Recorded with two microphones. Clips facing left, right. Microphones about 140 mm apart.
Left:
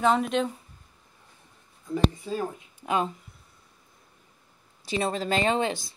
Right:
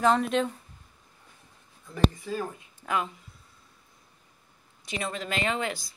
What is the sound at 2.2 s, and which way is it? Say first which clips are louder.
Speech: left 2 dB; 20° left (ahead or behind).